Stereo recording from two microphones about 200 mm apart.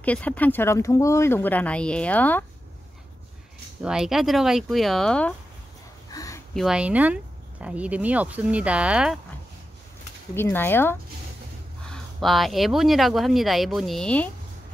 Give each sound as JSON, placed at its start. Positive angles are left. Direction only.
{"t": 0.0, "sound": "speech", "side_deg": 5}
{"t": 3.8, "sound": "speech", "side_deg": -5}
{"t": 6.1, "sound": "a sound", "side_deg": 15}
{"t": 6.5, "sound": "speech", "side_deg": 0}
{"t": 10.3, "sound": "speech", "side_deg": 10}